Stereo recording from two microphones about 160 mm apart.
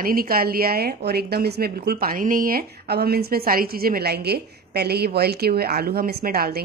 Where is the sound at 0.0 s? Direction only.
65° right (ahead or behind).